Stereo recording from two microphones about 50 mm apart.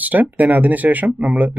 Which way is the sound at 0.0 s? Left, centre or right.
Right.